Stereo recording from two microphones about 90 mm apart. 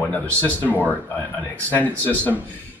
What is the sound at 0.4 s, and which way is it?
A man's voice, 20° left (ahead or behind).